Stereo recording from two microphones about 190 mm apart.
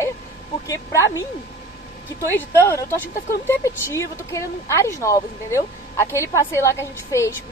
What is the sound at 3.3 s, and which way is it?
A woman's voice, 15° left (ahead or behind).